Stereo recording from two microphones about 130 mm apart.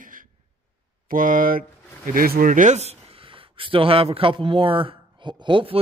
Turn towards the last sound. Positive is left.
turn(degrees=-40)  # may be behind; listen again after turning